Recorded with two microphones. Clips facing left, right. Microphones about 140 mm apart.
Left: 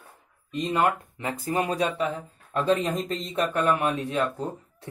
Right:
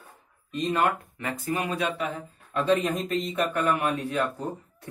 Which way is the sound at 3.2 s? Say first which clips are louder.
Left 1 dB; 25° left (ahead or behind).